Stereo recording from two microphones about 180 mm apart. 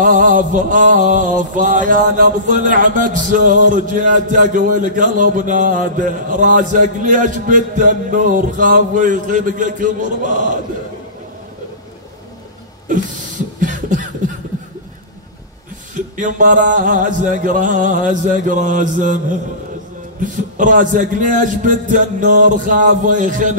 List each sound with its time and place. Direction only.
0.0 s music: 45° right (ahead or behind)
12.8 s cough: 45° right (ahead or behind)
15.9 s music: 45° right (ahead or behind)